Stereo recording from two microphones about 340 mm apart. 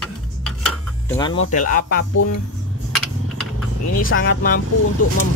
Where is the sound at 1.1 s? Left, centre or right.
Centre.